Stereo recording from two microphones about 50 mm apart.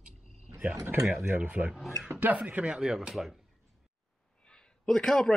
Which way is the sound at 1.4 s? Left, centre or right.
Right.